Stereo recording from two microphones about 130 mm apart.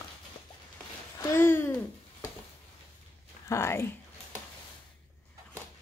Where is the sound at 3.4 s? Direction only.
20° left (ahead or behind).